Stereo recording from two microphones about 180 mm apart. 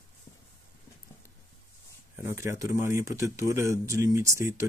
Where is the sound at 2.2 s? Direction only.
15° right (ahead or behind).